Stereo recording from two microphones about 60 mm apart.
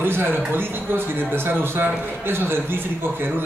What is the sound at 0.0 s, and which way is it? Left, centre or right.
A man's voice, right.